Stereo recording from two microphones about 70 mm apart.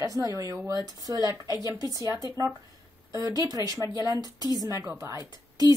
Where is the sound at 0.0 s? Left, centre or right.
Right.